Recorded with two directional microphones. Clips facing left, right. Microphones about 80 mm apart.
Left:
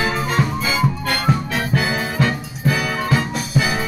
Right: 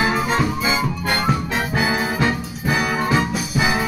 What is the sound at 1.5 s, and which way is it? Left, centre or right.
Brass instrument, right.